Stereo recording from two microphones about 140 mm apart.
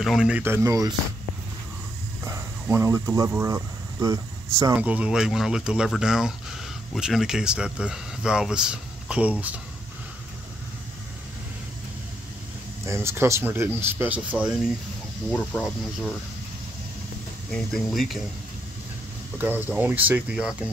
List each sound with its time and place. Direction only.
0.0 s speech: 5° right (ahead or behind); by 0.9 s 25° right (ahead or behind)
2.2 s speech: 20° right (ahead or behind)
4.7 s speech: 10° right (ahead or behind)
12.8 s speech: 20° right (ahead or behind)
15.2 s speech: centre (ahead or behind)
17.5 s speech: centre (ahead or behind)
19.3 s speech: 15° right (ahead or behind)